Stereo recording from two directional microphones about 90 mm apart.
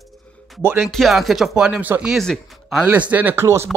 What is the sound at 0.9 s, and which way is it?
Speech, centre (ahead or behind).